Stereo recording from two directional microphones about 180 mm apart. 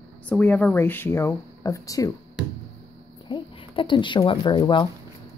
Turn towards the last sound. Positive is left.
turn(degrees=25)  # may be behind; listen again after turning